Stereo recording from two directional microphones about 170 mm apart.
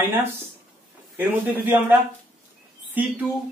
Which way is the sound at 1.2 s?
10° right (ahead or behind).